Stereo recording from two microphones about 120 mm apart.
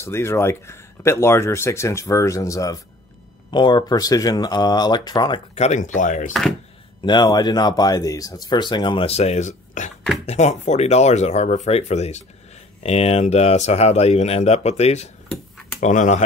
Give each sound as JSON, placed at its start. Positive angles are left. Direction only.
{"t": 0.0, "sound": "speech", "side_deg": 20}
{"t": 3.5, "sound": "speech", "side_deg": 40}
{"t": 5.5, "sound": "speech", "side_deg": 70}
{"t": 7.0, "sound": "speech", "side_deg": 40}
{"t": 10.2, "sound": "speech", "side_deg": 65}
{"t": 15.8, "sound": "speech", "side_deg": 90}